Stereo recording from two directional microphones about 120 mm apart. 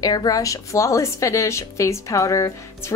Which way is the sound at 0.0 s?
35° left (ahead or behind).